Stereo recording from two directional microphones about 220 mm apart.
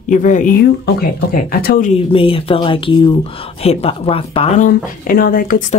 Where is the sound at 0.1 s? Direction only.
35° left (ahead or behind).